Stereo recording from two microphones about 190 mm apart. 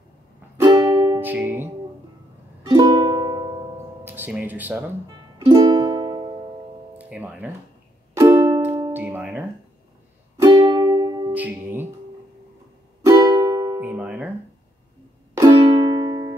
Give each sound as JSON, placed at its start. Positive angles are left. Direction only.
{"t": 0.6, "sound": "music", "side_deg": -15}
{"t": 1.2, "sound": "music", "side_deg": -10}
{"t": 2.6, "sound": "music", "side_deg": -20}
{"t": 4.0, "sound": "speech", "side_deg": -10}
{"t": 5.4, "sound": "music", "side_deg": -20}
{"t": 7.0, "sound": "speech", "side_deg": -10}
{"t": 8.2, "sound": "music", "side_deg": -20}
{"t": 11.3, "sound": "speech", "side_deg": -10}
{"t": 13.0, "sound": "music", "side_deg": -20}
{"t": 13.7, "sound": "music", "side_deg": -10}
{"t": 15.3, "sound": "music", "side_deg": -20}